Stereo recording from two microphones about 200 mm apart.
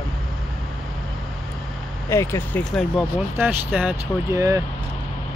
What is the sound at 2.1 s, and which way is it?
Speech, 15° left (ahead or behind).